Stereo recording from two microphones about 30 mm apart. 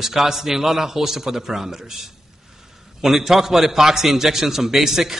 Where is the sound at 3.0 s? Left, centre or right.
Centre.